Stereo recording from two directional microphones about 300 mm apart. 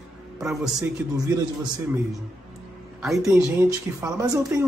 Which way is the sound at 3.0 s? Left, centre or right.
Centre.